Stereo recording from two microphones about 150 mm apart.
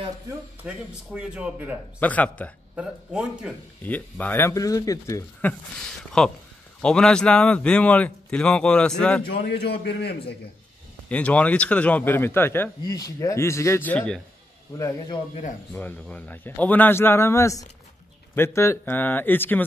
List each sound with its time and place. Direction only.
0.7 s speech: 5° right (ahead or behind)
2.0 s a man's voice: 10° left (ahead or behind)
2.7 s a man's voice: 5° right (ahead or behind)
3.8 s a man's voice: 10° left (ahead or behind)
5.5 s a man's voice: 5° left (ahead or behind)
9.2 s a man's voice: 90° left
11.1 s a man's voice: 10° left (ahead or behind)
15.7 s a man's voice: 10° left (ahead or behind)